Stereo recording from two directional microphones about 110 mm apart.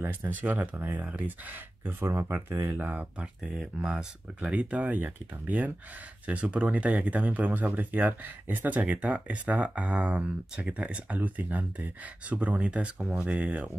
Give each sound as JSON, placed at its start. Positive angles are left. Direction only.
{"t": 0.0, "sound": "speech", "side_deg": -20}